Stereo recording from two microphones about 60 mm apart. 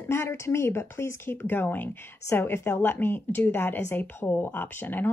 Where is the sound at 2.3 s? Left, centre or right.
Left.